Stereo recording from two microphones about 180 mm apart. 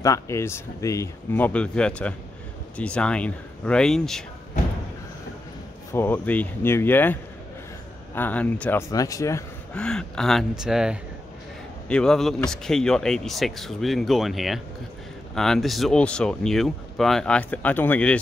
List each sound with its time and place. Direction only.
0.0 s speech: 15° left (ahead or behind)
5.9 s speech: 10° left (ahead or behind)
9.8 s speech: 5° left (ahead or behind)